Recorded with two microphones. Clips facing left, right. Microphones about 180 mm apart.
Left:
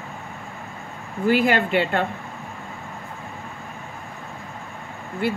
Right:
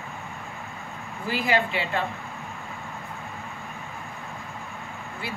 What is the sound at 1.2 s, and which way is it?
Speech, 60° left (ahead or behind).